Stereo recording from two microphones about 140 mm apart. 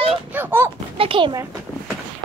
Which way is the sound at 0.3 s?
15° right (ahead or behind).